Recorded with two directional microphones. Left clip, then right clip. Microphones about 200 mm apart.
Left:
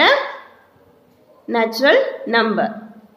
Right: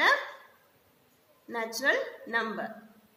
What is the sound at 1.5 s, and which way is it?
A woman's voice, 25° left (ahead or behind).